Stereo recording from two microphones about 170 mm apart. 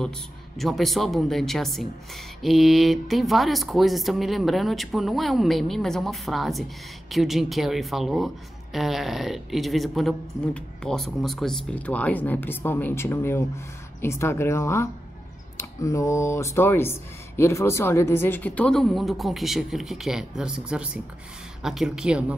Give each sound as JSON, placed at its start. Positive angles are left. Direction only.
{"t": 0.6, "sound": "speech", "side_deg": 0}